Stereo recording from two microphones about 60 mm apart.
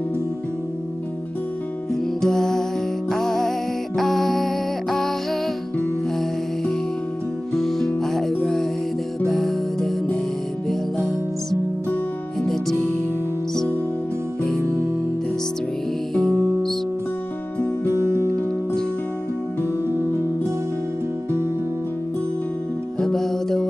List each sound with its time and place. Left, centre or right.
2.2 s music: centre
7.5 s music: centre
12.4 s music: centre
16.2 s music: centre
17.8 s music: right
19.9 s music: right
22.9 s music: centre